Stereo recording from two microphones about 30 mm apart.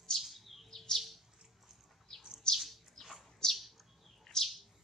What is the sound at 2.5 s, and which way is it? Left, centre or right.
Bird, left.